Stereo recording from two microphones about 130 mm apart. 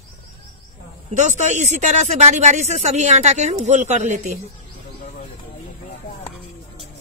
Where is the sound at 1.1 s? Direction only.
65° right (ahead or behind).